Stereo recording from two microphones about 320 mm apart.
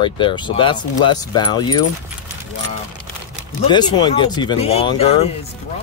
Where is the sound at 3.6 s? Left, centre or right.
Centre.